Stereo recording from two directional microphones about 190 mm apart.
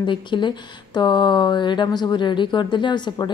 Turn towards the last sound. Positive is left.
turn(degrees=25)  # may be behind; listen again after turning